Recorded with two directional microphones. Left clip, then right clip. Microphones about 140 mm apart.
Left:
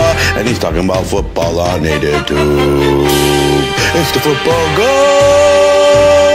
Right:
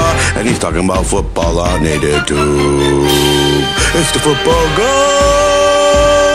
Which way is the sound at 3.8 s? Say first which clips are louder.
Left 1 dB; 10° right (ahead or behind).